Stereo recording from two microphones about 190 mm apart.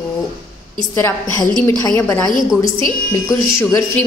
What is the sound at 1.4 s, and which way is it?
A woman's voice, 20° left (ahead or behind).